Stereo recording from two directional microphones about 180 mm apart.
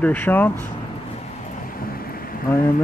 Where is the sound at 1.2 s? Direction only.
45° left (ahead or behind).